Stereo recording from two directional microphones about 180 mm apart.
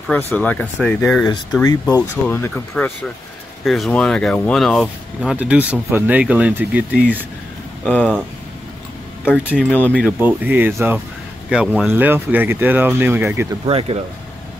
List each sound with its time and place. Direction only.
0.3 s speech: 10° left (ahead or behind); by 6.8 s 5° right (ahead or behind)
7.8 s speech: 5° left (ahead or behind)
9.4 s speech: 10° right (ahead or behind)
9.7 s speech: 10° left (ahead or behind)
9.9 s speech: 10° right (ahead or behind)
13.7 s speech: 30° right (ahead or behind)